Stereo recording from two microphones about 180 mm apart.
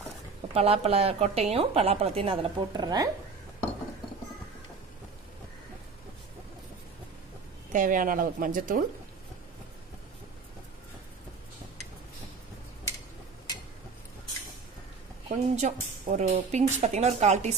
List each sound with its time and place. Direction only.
0.6 s a woman's voice: 35° right (ahead or behind)
7.7 s a woman's voice: 50° right (ahead or behind)
15.2 s a woman's voice: 45° right (ahead or behind)